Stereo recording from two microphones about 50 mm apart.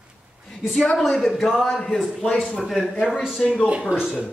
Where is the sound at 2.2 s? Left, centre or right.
Left.